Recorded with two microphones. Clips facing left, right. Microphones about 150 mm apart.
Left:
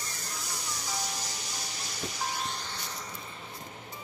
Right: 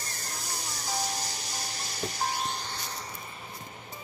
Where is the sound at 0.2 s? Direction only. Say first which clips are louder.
Right 3 dB; 35° right (ahead or behind).